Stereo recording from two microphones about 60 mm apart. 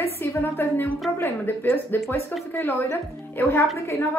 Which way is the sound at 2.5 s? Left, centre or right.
Left.